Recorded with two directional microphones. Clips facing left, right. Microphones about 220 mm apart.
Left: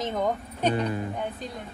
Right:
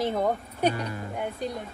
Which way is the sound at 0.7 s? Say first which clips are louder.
Left 6 dB; 30° left (ahead or behind).